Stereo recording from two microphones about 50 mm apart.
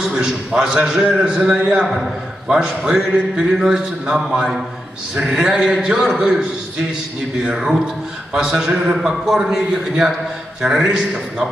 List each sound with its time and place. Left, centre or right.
0.0 s a man's voice: centre
7.5 s speech: centre